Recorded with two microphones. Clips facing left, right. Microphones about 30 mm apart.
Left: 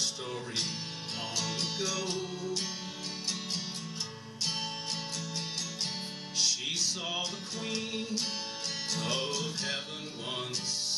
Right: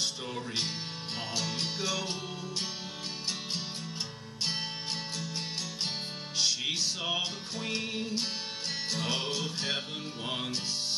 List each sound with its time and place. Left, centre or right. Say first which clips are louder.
0.0 s speech: right 1 dB; centre
1.3 s music: right 1 dB; centre
6.3 s music: right 1 dB; centre